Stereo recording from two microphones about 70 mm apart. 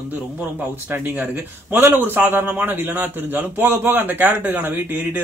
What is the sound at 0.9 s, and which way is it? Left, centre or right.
A man's voice, right.